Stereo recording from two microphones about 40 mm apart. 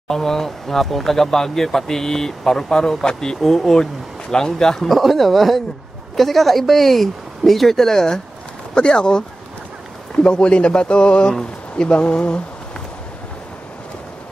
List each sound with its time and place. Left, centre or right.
0.1 s speech: centre
4.8 s speech: centre
8.7 s speech: left